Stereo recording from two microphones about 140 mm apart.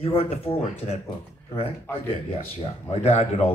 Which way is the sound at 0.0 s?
45° left (ahead or behind).